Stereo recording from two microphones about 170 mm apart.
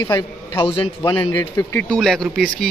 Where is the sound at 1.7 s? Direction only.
5° left (ahead or behind).